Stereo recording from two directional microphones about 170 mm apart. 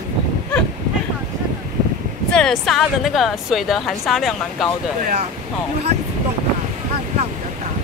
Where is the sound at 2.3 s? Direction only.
5° left (ahead or behind).